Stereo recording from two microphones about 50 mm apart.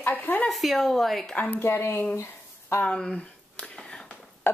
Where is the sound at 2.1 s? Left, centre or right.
Left.